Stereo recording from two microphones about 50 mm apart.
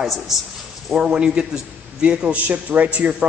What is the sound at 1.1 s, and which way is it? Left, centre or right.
A man's voice, centre.